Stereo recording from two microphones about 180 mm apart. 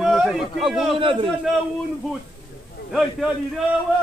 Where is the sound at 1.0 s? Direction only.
30° right (ahead or behind).